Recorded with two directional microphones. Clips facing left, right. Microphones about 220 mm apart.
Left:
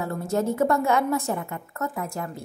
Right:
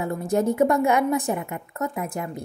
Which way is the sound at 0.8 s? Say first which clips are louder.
Right 2 dB; 15° right (ahead or behind).